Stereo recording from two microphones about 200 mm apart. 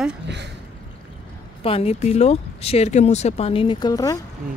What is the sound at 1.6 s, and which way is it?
Speech, 30° left (ahead or behind).